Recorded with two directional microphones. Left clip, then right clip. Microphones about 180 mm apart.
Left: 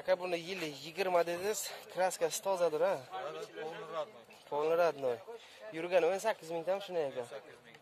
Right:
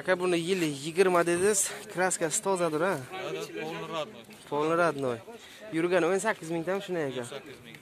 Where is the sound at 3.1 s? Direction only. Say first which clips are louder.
Right 6 dB; 55° left (ahead or behind).